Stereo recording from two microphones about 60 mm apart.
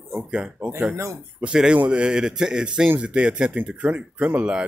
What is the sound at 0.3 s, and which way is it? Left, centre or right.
Speech, centre.